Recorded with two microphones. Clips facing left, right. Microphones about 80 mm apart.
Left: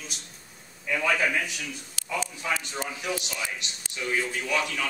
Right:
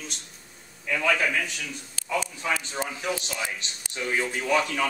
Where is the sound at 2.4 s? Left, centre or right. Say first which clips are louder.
Right 2 dB; centre.